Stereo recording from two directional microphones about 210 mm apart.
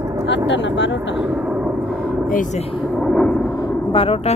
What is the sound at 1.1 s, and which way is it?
Speech, 5° right (ahead or behind).